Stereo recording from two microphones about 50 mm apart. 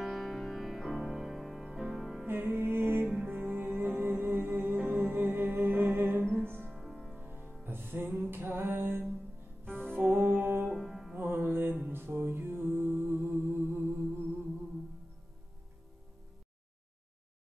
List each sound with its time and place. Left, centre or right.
0.0 s music: centre
2.5 s music: right
3.8 s humming: right
4.8 s music: right
6.7 s music: centre
7.2 s music: right
7.6 s music: right
9.7 s music: centre
9.9 s music: right
10.6 s music: centre
11.1 s music: right
11.9 s mantra: right